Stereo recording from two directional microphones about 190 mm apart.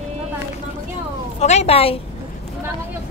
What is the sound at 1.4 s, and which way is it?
Speech, 35° left (ahead or behind).